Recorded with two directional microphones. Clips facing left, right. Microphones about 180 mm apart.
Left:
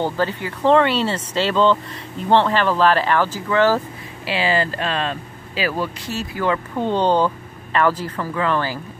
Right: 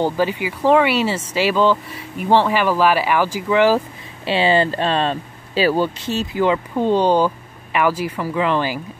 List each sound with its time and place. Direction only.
0.0 s speech: 10° right (ahead or behind)
4.3 s speech: 25° right (ahead or behind)